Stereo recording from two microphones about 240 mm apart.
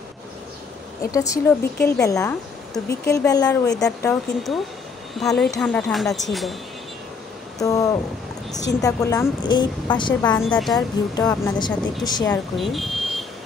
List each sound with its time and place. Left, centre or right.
1.1 s a woman's voice: centre
7.6 s a woman's voice: centre
10.2 s a woman's voice: centre
12.5 s speech: centre